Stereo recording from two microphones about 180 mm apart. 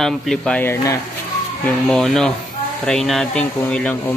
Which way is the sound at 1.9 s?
5° left (ahead or behind).